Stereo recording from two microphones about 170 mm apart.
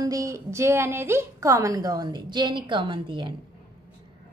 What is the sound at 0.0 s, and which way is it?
A woman's voice, 20° right (ahead or behind).